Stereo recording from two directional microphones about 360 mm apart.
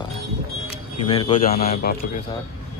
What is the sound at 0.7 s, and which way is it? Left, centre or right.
Speech, centre.